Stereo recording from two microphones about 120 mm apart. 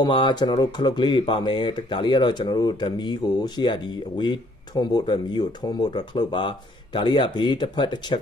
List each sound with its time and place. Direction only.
0.0 s speech: 40° left (ahead or behind)